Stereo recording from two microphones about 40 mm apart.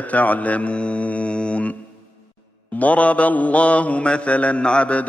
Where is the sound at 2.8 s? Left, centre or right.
Left.